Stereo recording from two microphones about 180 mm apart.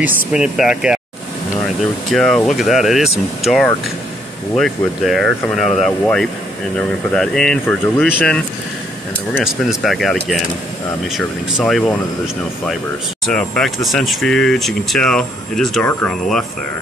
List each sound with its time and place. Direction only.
0.3 s speech: 5° right (ahead or behind)
2.0 s speech: 5° left (ahead or behind)
9.4 s speech: centre (ahead or behind)
11.1 s speech: centre (ahead or behind)
13.3 s speech: 5° left (ahead or behind)